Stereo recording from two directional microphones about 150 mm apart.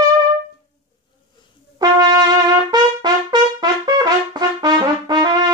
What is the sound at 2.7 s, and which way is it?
Trumpet, 30° right (ahead or behind).